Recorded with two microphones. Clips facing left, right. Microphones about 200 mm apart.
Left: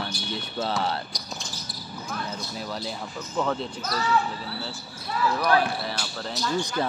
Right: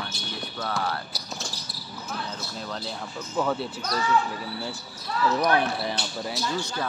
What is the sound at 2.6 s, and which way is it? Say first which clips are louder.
Speech: left 1 dB; 5° left (ahead or behind).